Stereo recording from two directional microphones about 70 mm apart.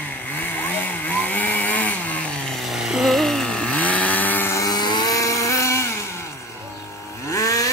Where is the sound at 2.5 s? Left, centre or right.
Centre; by 4.5 s left.